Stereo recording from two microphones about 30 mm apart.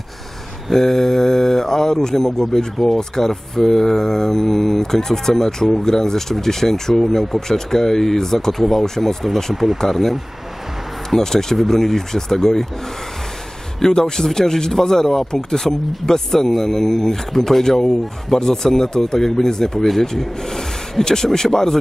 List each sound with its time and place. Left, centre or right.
0.7 s speech: centre
3.0 s speech: centre
11.1 s speech: centre
13.7 s speech: left